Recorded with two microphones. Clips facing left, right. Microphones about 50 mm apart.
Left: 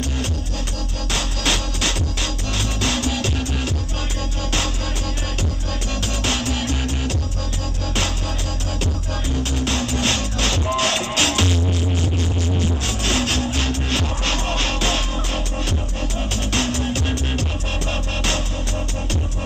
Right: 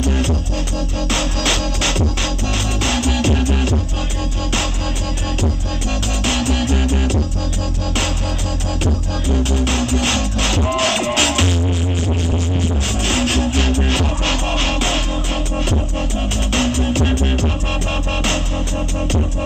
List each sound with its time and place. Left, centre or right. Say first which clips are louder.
1.1 s music: right 2 dB; right
6.2 s music: right 5 dB; right
9.4 s music: right 3 dB; right
13.1 s music: right 4 dB; right